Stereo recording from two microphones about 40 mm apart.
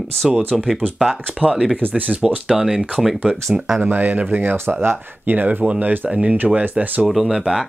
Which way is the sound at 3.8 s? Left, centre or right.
Right.